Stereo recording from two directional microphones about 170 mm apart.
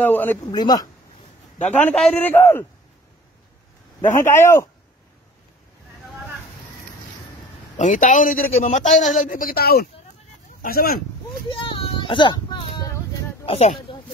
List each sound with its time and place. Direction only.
0.0 s speech: 10° left (ahead or behind)
0.5 s speech: 25° left (ahead or behind)
1.7 s speech: 5° left (ahead or behind)
4.0 s speech: 15° left (ahead or behind)
7.7 s a man's voice: 45° left (ahead or behind)
11.4 s child singing: 30° left (ahead or behind)
13.5 s speech: 35° left (ahead or behind)